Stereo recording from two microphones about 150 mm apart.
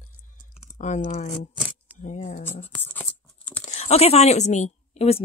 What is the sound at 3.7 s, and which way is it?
Speech, 45° left (ahead or behind).